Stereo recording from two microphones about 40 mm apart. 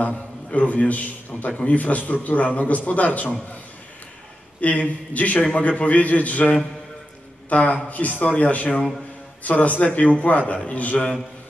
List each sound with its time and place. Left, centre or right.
0.0 s a man's voice: left
4.6 s a man's voice: left